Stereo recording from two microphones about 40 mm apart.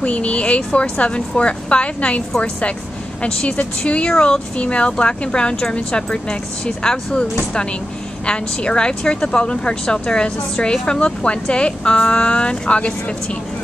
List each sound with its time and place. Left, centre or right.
0.0 s speech: left